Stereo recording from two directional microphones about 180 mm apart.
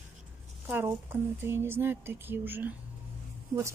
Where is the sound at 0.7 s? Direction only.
10° right (ahead or behind).